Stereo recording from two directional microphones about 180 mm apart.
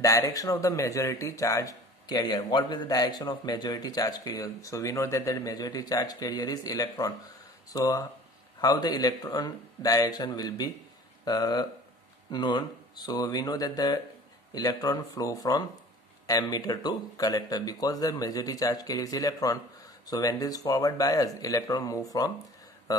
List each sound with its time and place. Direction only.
0.0 s speech: 20° left (ahead or behind)